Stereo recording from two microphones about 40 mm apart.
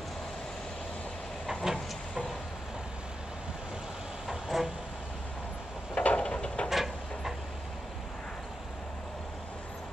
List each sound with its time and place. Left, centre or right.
1.5 s vehicle: centre
4.3 s vehicle: centre
5.9 s a sound: left
6.7 s vehicle: centre